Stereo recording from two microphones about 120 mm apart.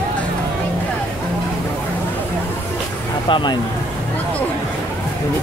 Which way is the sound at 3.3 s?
40° left (ahead or behind).